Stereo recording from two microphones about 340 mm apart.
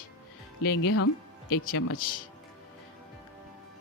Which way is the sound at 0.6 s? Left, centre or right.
Left.